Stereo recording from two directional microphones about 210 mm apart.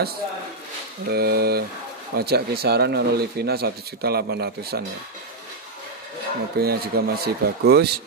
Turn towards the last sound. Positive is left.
turn(degrees=-50)  # may be behind; listen again after turning